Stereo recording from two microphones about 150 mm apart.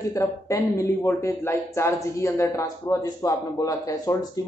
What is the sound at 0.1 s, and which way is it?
Speech, 20° left (ahead or behind).